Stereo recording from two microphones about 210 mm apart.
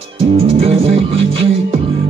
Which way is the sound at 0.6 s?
30° right (ahead or behind).